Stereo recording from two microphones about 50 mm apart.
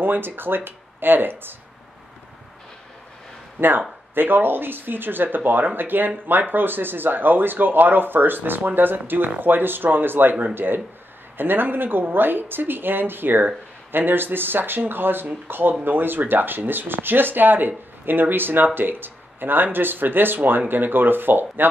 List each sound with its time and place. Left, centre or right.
0.0 s speech: right
3.6 s speech: right